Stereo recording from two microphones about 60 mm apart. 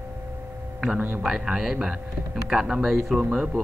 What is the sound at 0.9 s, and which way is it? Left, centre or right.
Speech, right.